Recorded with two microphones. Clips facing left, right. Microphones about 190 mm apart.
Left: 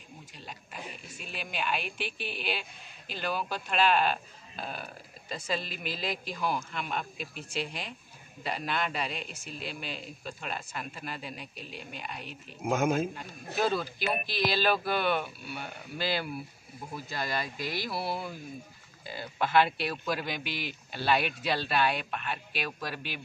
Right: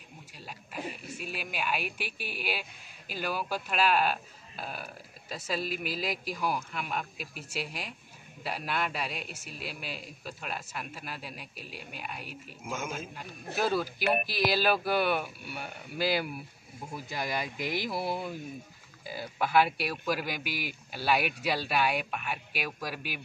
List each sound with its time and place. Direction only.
0.3 s a sound: 5° right (ahead or behind)
3.1 s speech: 10° right (ahead or behind)
12.6 s speech: 65° left (ahead or behind)
13.1 s speech: 5° right (ahead or behind)